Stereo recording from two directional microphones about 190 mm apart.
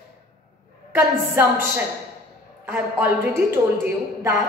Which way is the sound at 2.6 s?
10° right (ahead or behind).